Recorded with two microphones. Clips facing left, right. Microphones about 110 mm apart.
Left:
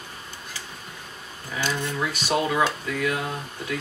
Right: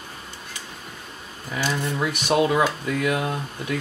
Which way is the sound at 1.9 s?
20° right (ahead or behind).